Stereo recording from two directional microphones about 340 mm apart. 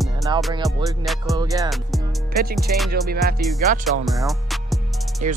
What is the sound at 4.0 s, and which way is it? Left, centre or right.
Music, centre.